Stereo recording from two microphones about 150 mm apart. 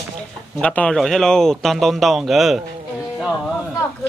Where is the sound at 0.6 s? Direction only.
5° left (ahead or behind).